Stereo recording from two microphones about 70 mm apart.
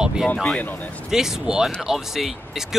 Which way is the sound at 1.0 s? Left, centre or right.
Centre.